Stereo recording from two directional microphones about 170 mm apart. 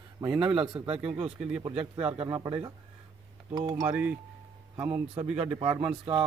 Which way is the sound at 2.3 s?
20° right (ahead or behind).